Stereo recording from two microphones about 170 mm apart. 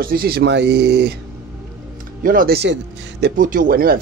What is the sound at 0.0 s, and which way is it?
Speech, 65° right (ahead or behind).